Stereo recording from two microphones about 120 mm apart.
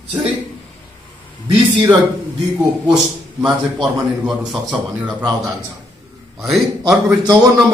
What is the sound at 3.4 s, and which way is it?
A man's voice, 5° right (ahead or behind).